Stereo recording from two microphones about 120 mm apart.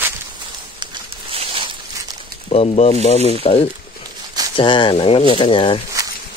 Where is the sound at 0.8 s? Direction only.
45° right (ahead or behind).